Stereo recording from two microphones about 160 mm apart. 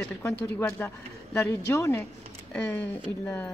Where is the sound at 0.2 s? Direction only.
10° left (ahead or behind).